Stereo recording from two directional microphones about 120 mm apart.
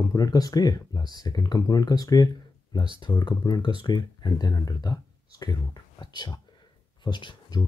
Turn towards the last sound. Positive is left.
turn(degrees=35)  # may be behind; listen again after turning